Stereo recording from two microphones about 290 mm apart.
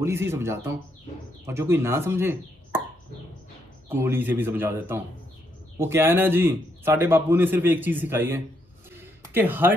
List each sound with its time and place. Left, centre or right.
0.0 s a man's voice: centre
3.9 s a man's voice: centre
8.9 s a sound: centre